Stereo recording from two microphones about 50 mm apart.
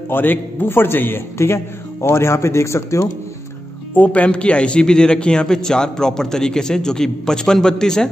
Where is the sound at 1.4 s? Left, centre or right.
Left.